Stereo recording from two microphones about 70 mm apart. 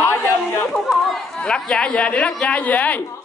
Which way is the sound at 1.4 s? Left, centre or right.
Centre.